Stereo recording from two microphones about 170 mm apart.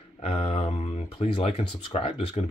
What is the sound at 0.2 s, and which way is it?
Speech, 35° left (ahead or behind).